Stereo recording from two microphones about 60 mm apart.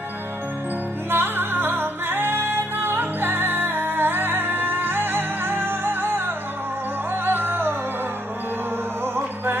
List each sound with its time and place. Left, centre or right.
1.1 s music: right
7.2 s music: right